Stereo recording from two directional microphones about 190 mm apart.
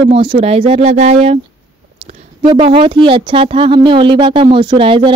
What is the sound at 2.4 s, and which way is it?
Speech, 25° right (ahead or behind).